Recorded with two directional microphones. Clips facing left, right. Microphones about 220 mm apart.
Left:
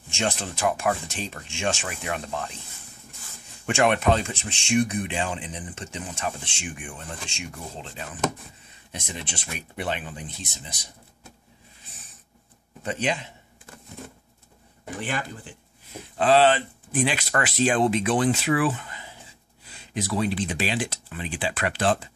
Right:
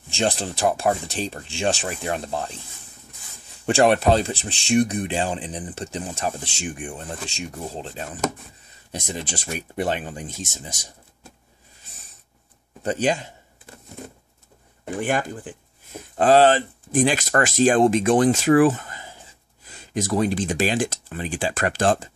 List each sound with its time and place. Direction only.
0.1 s speech: 35° right (ahead or behind)
3.6 s speech: 35° right (ahead or behind)
12.8 s speech: 40° right (ahead or behind)
15.0 s speech: 45° right (ahead or behind)